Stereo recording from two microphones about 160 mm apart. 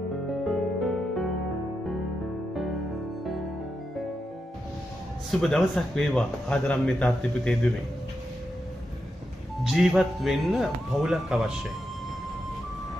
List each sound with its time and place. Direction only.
0.3 s music: centre (ahead or behind)
5.4 s a man's voice: 5° left (ahead or behind)
9.6 s a man's voice: centre (ahead or behind)